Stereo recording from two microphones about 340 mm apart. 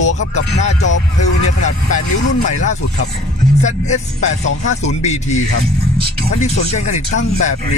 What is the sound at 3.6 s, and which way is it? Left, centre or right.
Speech, centre.